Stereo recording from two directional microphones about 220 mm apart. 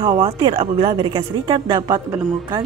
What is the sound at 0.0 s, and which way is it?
A woman's voice, 25° right (ahead or behind).